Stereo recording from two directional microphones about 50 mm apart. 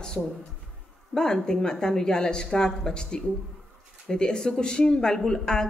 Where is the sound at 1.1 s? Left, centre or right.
Centre.